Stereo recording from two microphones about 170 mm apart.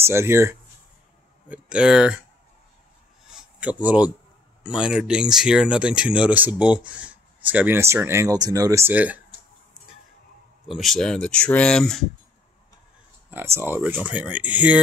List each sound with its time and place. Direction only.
0.0 s speech: 15° right (ahead or behind)
3.5 s speech: 5° right (ahead or behind)
10.7 s speech: centre (ahead or behind)
13.3 s speech: 15° right (ahead or behind)